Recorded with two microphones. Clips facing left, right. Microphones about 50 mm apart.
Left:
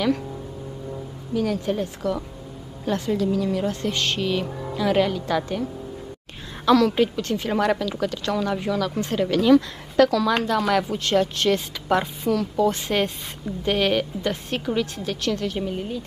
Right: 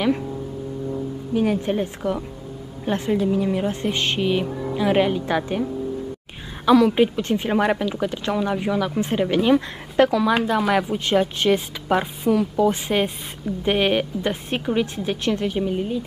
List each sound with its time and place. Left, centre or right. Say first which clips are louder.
1.3 s speech: right 2 dB; right
4.5 s music: right 4 dB; centre
4.7 s a woman's voice: right 2 dB; right
15.5 s a woman's voice: right 4 dB; centre